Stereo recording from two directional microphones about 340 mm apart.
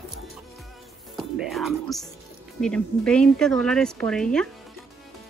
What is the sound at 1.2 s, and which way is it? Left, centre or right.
Music, centre.